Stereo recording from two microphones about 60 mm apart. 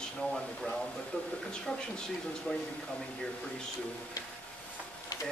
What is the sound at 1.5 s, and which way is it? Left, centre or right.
Speech, centre.